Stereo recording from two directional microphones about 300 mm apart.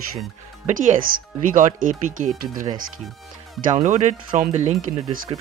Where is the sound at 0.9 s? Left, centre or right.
Right.